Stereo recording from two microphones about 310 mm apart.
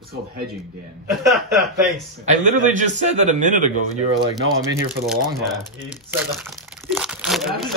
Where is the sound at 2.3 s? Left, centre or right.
Right.